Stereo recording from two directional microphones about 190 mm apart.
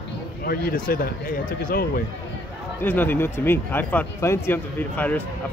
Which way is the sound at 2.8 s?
10° left (ahead or behind).